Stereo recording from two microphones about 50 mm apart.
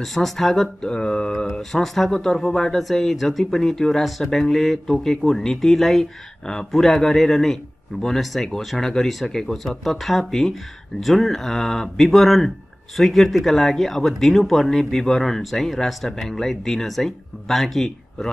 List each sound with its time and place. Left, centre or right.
0.0 s speech: centre
0.8 s speech: centre
1.5 s speech: centre